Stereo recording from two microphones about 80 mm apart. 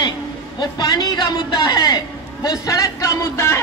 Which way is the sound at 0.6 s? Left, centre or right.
Left.